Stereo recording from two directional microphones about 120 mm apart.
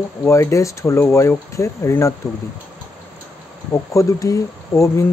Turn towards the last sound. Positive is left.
turn(degrees=25)  # may be behind; listen again after turning